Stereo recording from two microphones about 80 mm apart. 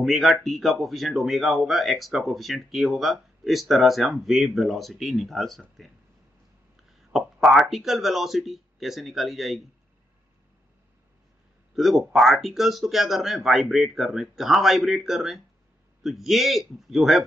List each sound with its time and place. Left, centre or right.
0.0 s speech: centre
6.8 s speech: centre
11.7 s speech: centre